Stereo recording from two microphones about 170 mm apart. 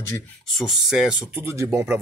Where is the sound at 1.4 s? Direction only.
15° right (ahead or behind).